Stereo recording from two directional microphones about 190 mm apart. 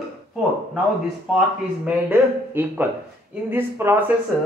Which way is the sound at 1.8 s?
10° right (ahead or behind).